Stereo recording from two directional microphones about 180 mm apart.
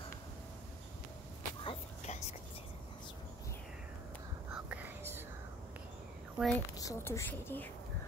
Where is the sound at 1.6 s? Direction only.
40° left (ahead or behind).